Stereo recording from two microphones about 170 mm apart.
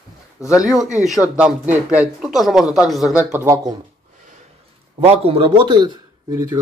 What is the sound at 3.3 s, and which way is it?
Speech, 20° right (ahead or behind).